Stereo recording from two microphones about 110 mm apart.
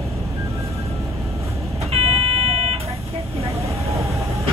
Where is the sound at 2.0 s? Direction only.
65° right (ahead or behind).